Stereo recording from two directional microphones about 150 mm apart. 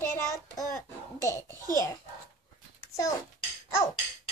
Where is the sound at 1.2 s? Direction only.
20° left (ahead or behind).